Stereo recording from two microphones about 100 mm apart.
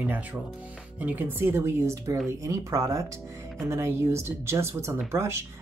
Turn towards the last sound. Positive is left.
turn(degrees=-25)  # may be behind; listen again after turning